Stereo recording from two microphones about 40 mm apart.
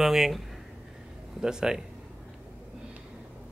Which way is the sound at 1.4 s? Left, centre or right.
Centre.